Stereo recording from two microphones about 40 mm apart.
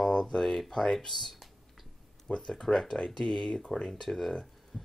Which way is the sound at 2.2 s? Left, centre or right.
Centre.